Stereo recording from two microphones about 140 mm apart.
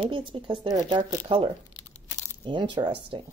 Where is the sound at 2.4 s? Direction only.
35° right (ahead or behind).